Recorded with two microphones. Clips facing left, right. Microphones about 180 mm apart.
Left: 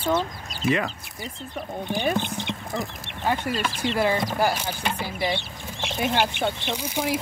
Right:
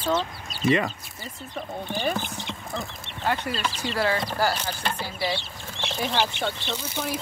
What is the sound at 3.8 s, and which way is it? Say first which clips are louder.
Speech: left 3 dB; 20° left (ahead or behind).